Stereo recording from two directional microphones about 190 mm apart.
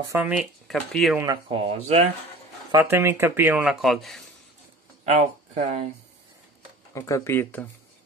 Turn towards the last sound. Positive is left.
turn(degrees=10)  # may be behind; listen again after turning